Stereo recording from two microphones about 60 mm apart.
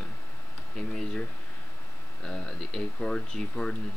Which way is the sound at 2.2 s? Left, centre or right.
Centre.